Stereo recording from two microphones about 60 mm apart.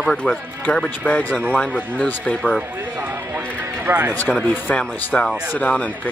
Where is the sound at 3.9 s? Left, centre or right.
Right.